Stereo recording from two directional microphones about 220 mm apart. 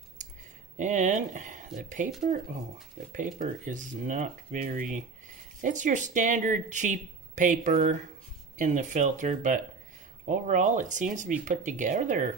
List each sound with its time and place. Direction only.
0.2 s a sound: 35° right (ahead or behind)
0.7 s speech: 35° right (ahead or behind)
3.1 s speech: 35° right (ahead or behind)